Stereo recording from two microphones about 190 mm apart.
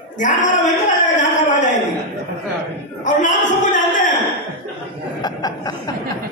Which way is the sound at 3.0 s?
40° left (ahead or behind).